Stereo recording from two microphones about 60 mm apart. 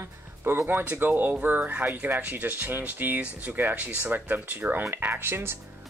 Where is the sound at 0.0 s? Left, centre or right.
Right.